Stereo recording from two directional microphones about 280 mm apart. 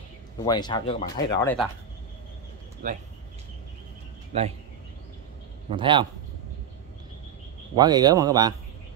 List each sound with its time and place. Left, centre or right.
0.5 s speech: centre
1.4 s speech: centre
2.8 s speech: right
4.3 s speech: right
5.7 s speech: centre
7.7 s speech: centre